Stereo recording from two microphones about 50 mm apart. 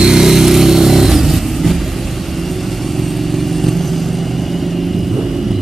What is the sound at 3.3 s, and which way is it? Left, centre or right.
Vehicle, centre.